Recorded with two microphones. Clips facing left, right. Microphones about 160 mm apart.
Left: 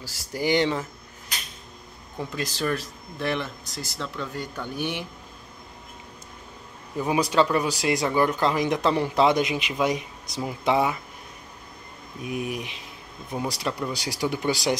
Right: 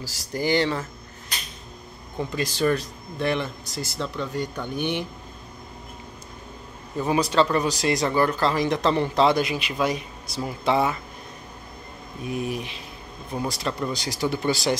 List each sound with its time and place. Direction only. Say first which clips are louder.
0.3 s speech: even; 15° left (ahead or behind)
2.1 s speech: right 4 dB; centre (ahead or behind)
7.0 s speech: right 1 dB; 10° left (ahead or behind)
12.2 s speech: right 1 dB; 15° left (ahead or behind)